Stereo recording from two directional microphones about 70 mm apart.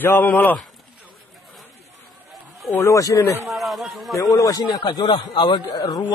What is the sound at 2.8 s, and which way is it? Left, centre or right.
Speech, left.